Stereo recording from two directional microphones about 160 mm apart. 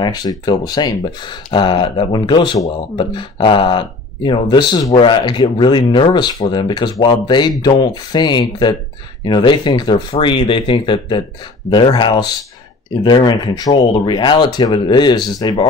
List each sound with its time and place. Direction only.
0.0 s speech: 25° left (ahead or behind)